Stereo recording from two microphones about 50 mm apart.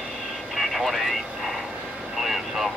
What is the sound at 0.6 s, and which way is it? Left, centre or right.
Vehicle, centre.